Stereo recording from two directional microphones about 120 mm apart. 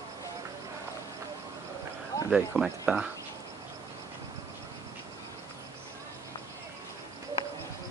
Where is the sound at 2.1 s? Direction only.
30° left (ahead or behind).